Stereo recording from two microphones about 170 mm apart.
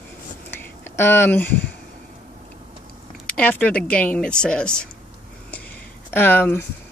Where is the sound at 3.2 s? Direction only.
10° left (ahead or behind).